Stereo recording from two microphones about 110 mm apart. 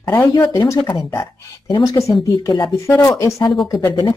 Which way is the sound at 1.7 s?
40° left (ahead or behind).